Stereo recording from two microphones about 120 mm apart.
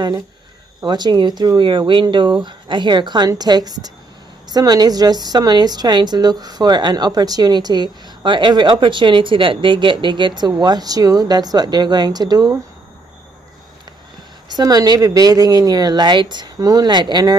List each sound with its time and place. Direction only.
0.7 s a woman's voice: 35° right (ahead or behind)
14.5 s a woman's voice: 30° right (ahead or behind)